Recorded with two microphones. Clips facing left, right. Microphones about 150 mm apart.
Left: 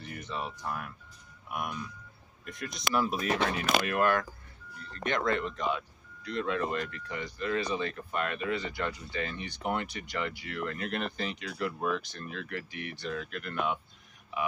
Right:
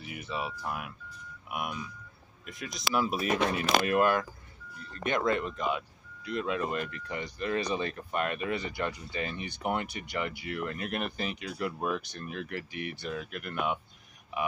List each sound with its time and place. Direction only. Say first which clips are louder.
0.0 s speech: right 1 dB; 5° right (ahead or behind)
4.0 s speech: right 1 dB; 15° right (ahead or behind)